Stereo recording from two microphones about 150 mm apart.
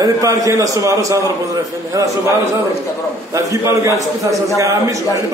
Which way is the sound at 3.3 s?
20° right (ahead or behind).